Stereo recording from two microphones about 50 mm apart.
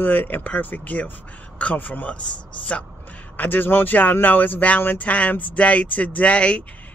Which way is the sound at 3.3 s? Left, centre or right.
Left.